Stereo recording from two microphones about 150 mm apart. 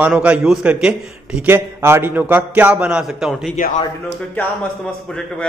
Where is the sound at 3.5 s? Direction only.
65° left (ahead or behind).